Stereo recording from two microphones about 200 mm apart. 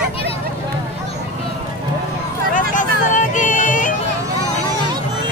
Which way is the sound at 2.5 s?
40° left (ahead or behind).